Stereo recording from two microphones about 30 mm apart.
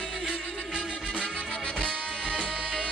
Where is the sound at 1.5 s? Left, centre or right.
Left.